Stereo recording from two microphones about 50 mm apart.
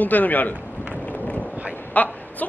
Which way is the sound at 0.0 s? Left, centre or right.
Left.